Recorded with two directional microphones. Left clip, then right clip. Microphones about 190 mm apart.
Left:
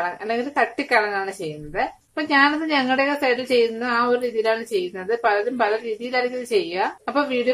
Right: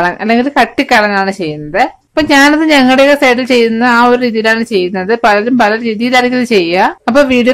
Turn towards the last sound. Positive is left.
turn(degrees=-40)  # may be behind; listen again after turning